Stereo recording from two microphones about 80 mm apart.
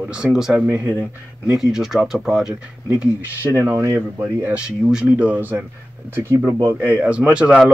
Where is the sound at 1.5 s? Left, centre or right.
Centre.